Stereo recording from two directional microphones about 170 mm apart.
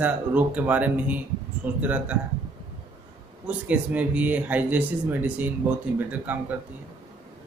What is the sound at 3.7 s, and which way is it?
Speech, 10° right (ahead or behind).